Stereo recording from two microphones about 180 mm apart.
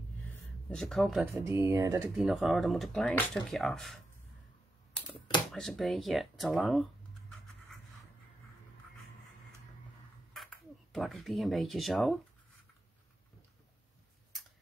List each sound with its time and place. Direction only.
0.7 s speech: centre (ahead or behind)
1.2 s speech: 15° right (ahead or behind)
2.1 s speech: centre (ahead or behind)
5.5 s speech: centre (ahead or behind)
10.3 s speech: centre (ahead or behind)